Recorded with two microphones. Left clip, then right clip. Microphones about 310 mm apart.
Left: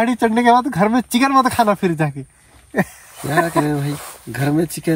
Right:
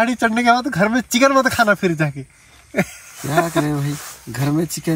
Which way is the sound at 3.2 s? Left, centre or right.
Centre.